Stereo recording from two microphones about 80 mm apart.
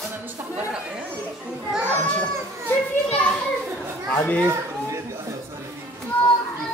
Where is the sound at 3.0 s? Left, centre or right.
Centre.